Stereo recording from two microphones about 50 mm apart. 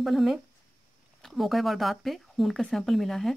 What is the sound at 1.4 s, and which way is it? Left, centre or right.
Speech, centre.